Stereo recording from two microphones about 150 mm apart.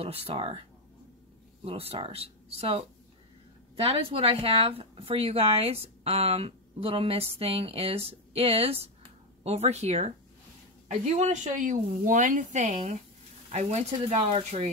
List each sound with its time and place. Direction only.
0.0 s speech: 40° right (ahead or behind)